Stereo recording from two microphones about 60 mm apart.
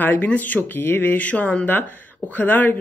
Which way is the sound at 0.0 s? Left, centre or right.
Left.